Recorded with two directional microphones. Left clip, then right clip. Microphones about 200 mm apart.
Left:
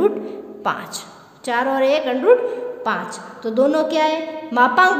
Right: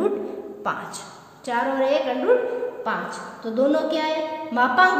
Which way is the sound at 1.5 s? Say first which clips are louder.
Left 4 dB; 50° left (ahead or behind).